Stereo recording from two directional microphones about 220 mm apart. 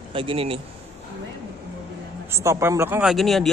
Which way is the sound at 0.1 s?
25° right (ahead or behind).